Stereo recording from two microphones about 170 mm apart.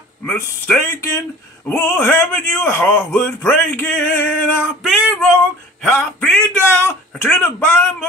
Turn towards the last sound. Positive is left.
turn(degrees=10)  # may be behind; listen again after turning